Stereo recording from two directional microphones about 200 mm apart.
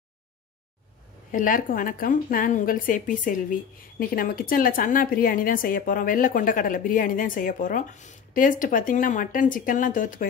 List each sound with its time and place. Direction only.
1.3 s a woman's voice: 40° left (ahead or behind)